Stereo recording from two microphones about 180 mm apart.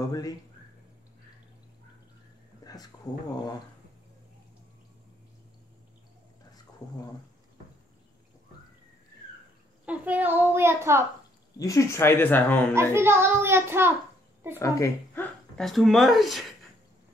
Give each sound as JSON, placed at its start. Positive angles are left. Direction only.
{"t": 0.0, "sound": "speech", "side_deg": 20}
{"t": 2.6, "sound": "a sound", "side_deg": 20}
{"t": 9.8, "sound": "a child's voice", "side_deg": -10}
{"t": 11.5, "sound": "speech", "side_deg": 20}
{"t": 12.9, "sound": "a child's voice", "side_deg": -15}
{"t": 14.6, "sound": "speech", "side_deg": 15}
{"t": 15.5, "sound": "speech", "side_deg": 0}